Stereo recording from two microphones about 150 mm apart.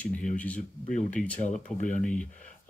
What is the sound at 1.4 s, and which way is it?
Speech, 55° left (ahead or behind).